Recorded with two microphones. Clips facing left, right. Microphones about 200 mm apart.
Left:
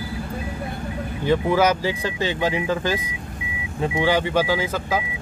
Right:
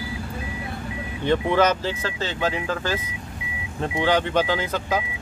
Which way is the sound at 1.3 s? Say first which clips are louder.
Left 1 dB; 5° left (ahead or behind).